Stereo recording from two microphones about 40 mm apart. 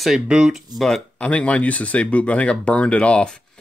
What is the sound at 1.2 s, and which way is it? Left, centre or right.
Speech, left.